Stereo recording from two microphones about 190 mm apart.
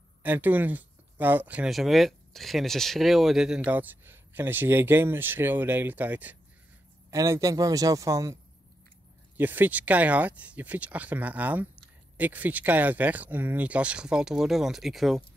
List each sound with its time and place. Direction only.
0.2 s speech: 10° right (ahead or behind)
9.4 s speech: 10° right (ahead or behind)